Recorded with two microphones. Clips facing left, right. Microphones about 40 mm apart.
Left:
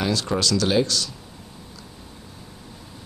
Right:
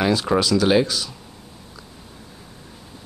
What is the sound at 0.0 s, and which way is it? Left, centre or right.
Speech, centre.